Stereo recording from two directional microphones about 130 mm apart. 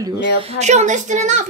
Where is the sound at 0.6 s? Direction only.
65° right (ahead or behind).